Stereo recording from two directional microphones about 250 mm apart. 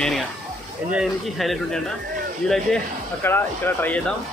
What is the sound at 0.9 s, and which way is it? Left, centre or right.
Speech, centre.